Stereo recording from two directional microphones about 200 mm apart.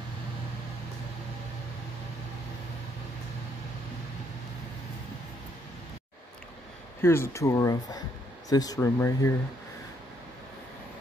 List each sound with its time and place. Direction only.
7.0 s speech: 10° left (ahead or behind)